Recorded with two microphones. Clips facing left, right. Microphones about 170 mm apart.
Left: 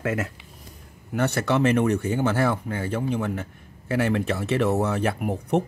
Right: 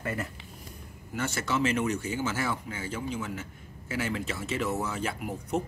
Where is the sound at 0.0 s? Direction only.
90° left.